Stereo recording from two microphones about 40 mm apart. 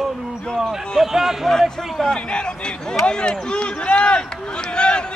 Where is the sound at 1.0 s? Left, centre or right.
Centre.